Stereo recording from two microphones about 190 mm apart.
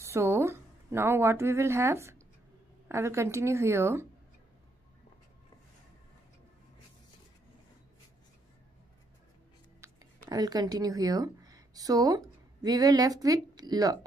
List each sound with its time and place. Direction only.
0.0 s a woman's voice: 15° right (ahead or behind)
9.8 s a sound: 15° right (ahead or behind)
10.3 s a woman's voice: 20° right (ahead or behind)